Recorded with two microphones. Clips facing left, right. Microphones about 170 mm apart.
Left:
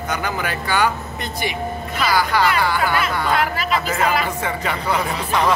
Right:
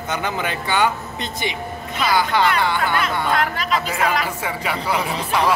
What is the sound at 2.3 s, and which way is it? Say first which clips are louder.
Speech: even; 25° right (ahead or behind).